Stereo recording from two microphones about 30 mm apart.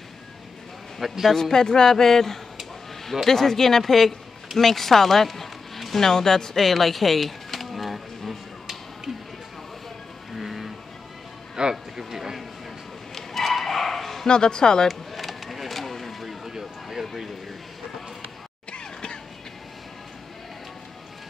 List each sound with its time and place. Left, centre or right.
1.3 s speech: centre
6.0 s pigeon: centre
10.3 s music: centre
11.6 s speech: right
12.1 s a sound: centre
13.1 s dog: centre
14.2 s speech: left
14.9 s a sound: centre
18.7 s a sound: left